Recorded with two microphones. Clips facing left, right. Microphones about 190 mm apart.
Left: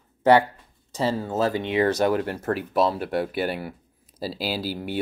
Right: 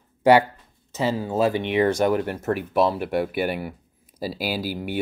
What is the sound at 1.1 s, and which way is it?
Speech, 10° right (ahead or behind).